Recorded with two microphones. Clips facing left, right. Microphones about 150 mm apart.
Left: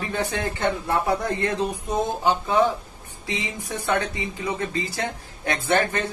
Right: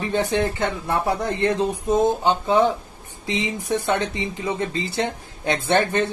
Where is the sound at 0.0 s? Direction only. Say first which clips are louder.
Right 5 dB; 20° right (ahead or behind).